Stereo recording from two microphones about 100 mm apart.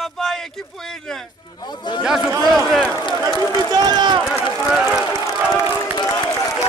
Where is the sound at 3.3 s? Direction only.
45° left (ahead or behind).